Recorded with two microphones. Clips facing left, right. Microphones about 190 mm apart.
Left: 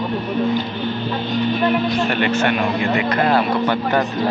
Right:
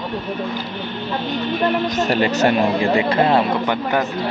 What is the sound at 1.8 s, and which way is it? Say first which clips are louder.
Speech: even; 40° right (ahead or behind).